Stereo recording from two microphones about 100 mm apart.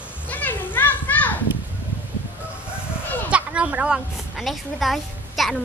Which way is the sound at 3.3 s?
10° right (ahead or behind).